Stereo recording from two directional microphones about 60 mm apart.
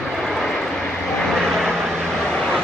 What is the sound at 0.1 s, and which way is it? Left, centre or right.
Vehicle, centre.